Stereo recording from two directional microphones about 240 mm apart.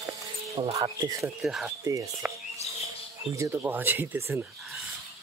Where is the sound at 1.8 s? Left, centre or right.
Centre.